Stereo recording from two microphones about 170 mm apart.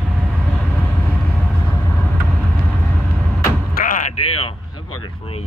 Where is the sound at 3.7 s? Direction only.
50° left (ahead or behind).